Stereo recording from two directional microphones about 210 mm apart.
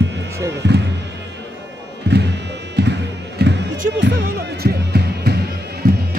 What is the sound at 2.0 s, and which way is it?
Music, 50° right (ahead or behind).